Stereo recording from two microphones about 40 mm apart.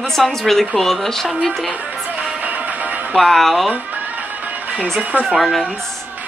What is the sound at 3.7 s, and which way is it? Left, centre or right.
Music, right.